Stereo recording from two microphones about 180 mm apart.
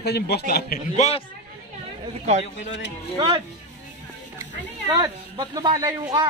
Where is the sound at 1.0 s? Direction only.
35° left (ahead or behind).